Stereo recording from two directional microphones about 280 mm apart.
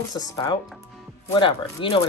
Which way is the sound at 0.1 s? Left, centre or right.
Centre.